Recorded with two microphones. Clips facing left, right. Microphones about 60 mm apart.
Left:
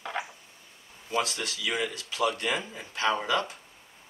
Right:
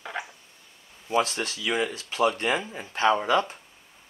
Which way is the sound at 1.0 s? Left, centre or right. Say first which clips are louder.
Right 5 dB; right.